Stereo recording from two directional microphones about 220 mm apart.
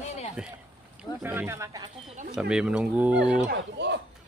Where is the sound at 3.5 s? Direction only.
50° right (ahead or behind).